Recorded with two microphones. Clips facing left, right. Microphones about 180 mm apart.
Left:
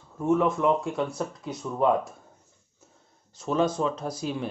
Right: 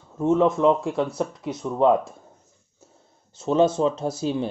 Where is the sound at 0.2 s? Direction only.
25° right (ahead or behind).